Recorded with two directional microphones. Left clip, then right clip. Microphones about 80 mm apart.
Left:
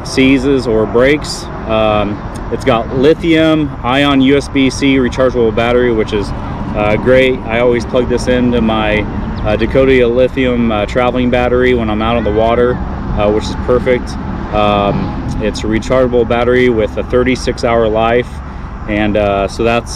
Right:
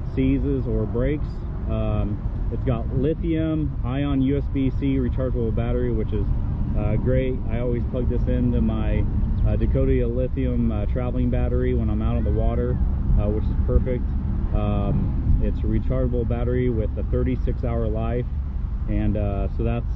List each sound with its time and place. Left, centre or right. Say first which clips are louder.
0.1 s speech: left 14 dB; left
13.2 s speech: left 17 dB; left